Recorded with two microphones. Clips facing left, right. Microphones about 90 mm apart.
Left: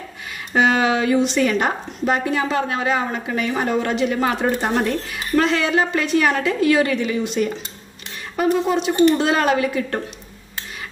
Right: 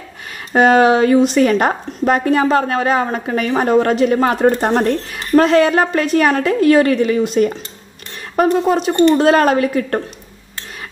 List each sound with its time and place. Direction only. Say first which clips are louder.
0.5 s a woman's voice: right 7 dB; 45° right (ahead or behind)